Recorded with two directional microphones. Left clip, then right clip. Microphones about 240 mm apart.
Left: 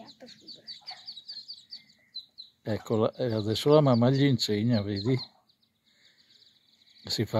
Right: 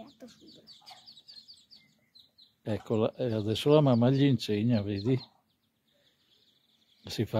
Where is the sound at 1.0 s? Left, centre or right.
Centre.